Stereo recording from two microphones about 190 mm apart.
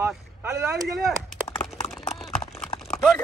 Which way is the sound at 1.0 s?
Centre (ahead or behind).